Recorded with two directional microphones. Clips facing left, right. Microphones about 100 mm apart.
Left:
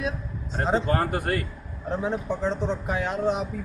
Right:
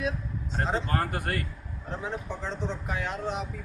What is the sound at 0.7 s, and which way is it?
A man's voice, 20° left (ahead or behind).